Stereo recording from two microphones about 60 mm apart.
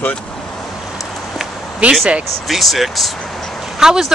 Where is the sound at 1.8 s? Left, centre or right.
Right.